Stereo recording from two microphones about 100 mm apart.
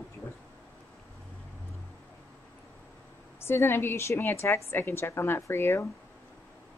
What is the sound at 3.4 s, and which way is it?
Speech, 25° left (ahead or behind).